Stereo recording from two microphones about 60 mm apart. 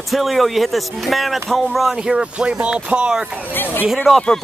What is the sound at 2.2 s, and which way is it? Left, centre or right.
Speech, centre.